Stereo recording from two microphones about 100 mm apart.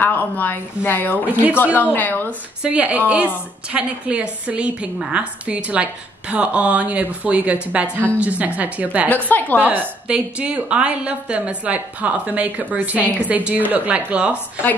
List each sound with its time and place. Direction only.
0.0 s speech: 20° left (ahead or behind)
1.2 s a woman's voice: 15° right (ahead or behind)
1.6 s a woman's voice: 20° left (ahead or behind)
2.6 s a woman's voice: 10° right (ahead or behind)
9.1 s a woman's voice: 15° left (ahead or behind)
9.6 s a woman's voice: 15° right (ahead or behind)